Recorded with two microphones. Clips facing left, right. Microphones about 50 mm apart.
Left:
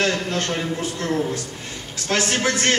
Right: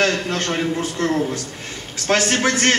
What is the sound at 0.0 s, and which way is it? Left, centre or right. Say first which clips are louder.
A man's voice: right 2 dB; right.